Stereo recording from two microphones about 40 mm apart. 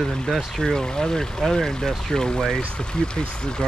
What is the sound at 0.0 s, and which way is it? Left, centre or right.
Speech, centre.